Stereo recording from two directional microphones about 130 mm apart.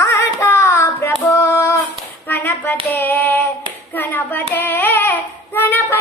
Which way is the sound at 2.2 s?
15° left (ahead or behind).